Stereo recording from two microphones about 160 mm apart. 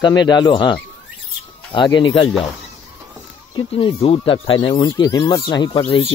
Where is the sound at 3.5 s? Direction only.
30° left (ahead or behind).